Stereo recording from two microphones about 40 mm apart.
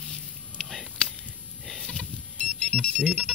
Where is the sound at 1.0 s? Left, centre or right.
Left.